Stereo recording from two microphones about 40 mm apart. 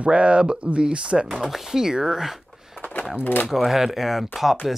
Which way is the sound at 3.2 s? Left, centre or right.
Left.